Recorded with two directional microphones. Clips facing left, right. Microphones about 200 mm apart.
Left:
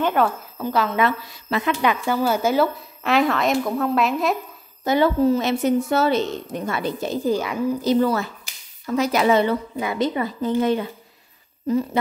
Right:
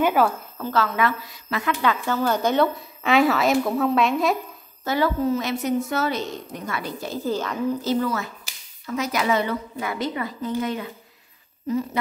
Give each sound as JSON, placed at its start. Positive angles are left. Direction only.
{"t": 0.0, "sound": "a woman's voice", "side_deg": -5}
{"t": 0.6, "sound": "a woman's voice", "side_deg": 15}
{"t": 4.8, "sound": "a woman's voice", "side_deg": 25}
{"t": 8.0, "sound": "a woman's voice", "side_deg": 30}